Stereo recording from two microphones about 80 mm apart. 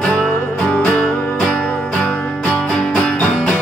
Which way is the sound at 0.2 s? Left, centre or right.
Centre.